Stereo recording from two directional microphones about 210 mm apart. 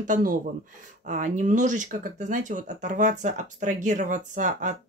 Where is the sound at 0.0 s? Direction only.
40° right (ahead or behind).